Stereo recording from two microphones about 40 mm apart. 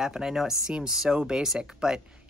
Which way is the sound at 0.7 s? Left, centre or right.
Centre.